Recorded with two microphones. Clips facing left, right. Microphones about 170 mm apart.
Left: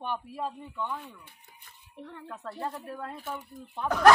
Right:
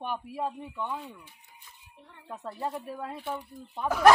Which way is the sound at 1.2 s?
65° left (ahead or behind).